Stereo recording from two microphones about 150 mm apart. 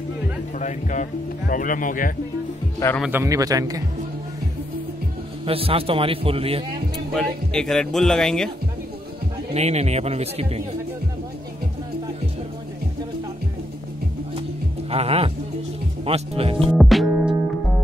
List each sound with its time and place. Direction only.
0.6 s speech: 55° left (ahead or behind)
3.1 s a man's voice: 20° right (ahead or behind)
5.5 s a man's voice: 40° right (ahead or behind)
7.1 s speech: 5° left (ahead or behind)
9.5 s speech: 45° right (ahead or behind)
14.9 s a man's voice: 40° right (ahead or behind)
16.7 s music: centre (ahead or behind)